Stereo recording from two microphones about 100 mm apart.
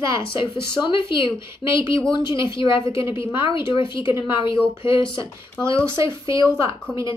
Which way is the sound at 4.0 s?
25° right (ahead or behind).